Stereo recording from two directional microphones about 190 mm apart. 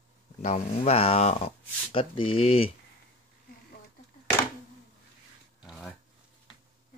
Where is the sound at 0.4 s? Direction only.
35° left (ahead or behind).